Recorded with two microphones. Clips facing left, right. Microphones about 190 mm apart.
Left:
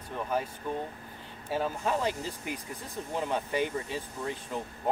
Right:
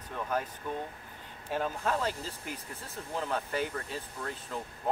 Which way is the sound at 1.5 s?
10° left (ahead or behind).